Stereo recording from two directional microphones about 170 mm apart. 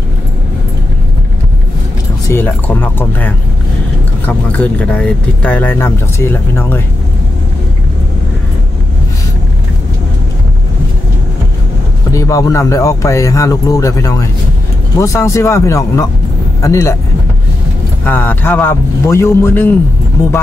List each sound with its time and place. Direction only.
2.2 s speech: 15° left (ahead or behind)
12.1 s speech: 20° left (ahead or behind)
18.0 s speech: 10° left (ahead or behind)